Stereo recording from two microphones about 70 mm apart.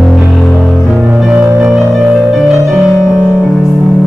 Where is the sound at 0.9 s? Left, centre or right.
Centre.